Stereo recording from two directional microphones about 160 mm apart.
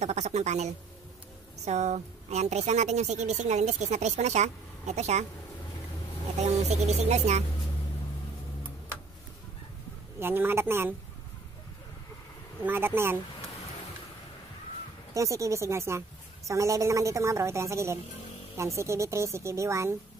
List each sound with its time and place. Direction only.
0.0 s a woman's voice: 45° right (ahead or behind)
6.4 s a woman's voice: 45° right (ahead or behind)
10.1 s a woman's voice: 15° right (ahead or behind)
12.6 s a woman's voice: 15° right (ahead or behind)
15.1 s a woman's voice: 20° right (ahead or behind)